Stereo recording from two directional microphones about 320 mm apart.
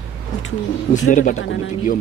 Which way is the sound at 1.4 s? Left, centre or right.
Left.